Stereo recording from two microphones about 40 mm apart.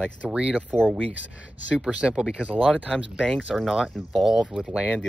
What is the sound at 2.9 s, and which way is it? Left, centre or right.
Speech, left.